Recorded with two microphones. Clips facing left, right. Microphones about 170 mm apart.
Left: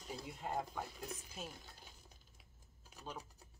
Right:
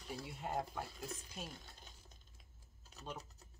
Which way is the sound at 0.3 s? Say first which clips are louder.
Even; centre (ahead or behind).